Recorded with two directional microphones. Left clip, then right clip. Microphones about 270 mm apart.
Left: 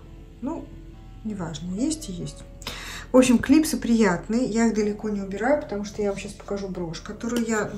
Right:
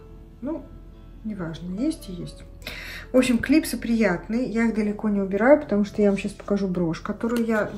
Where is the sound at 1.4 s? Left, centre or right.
Centre.